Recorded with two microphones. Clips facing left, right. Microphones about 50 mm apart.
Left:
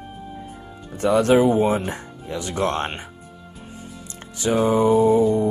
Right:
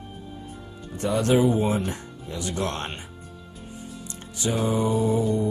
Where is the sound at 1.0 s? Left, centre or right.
Left.